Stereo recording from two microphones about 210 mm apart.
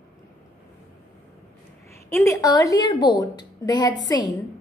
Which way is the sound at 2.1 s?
15° left (ahead or behind).